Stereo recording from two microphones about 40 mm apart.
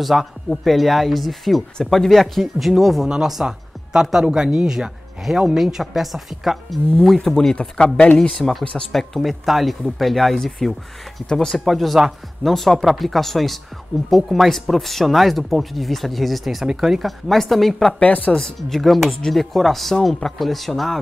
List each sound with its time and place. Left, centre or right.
0.0 s speech: centre
7.2 s speech: centre
7.5 s speech: left
8.9 s speech: centre
17.3 s speech: centre
18.0 s speech: left
18.4 s speech: centre